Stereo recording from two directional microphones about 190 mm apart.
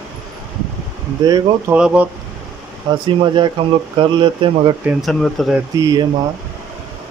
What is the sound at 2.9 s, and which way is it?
Speech, 25° right (ahead or behind).